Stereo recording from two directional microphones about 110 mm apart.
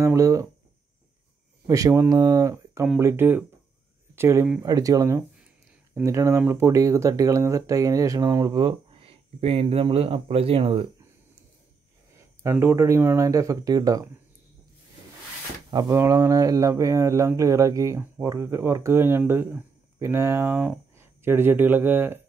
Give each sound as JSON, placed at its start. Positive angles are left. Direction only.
{"t": 0.0, "sound": "speech", "side_deg": -30}
{"t": 1.7, "sound": "speech", "side_deg": -30}
{"t": 8.5, "sound": "speech", "side_deg": -55}
{"t": 12.4, "sound": "speech", "side_deg": -20}
{"t": 15.9, "sound": "speech", "side_deg": -30}